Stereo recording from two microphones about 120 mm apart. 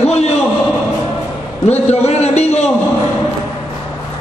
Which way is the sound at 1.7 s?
60° left (ahead or behind).